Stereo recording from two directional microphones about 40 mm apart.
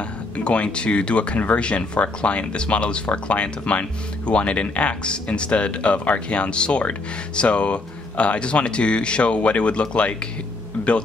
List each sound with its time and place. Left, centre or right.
0.4 s speech: left